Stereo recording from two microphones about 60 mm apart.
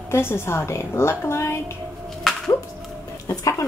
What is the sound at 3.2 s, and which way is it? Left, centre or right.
Speech, left.